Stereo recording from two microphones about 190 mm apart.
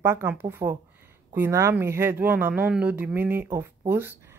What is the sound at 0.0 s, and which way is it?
Speech, 15° right (ahead or behind).